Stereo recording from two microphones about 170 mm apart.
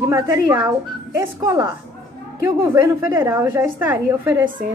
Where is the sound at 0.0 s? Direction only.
20° right (ahead or behind).